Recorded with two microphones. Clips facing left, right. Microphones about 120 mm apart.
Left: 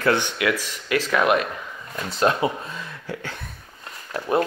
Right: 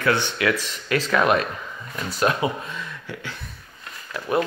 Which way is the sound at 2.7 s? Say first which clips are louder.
Left 1 dB; 40° left (ahead or behind).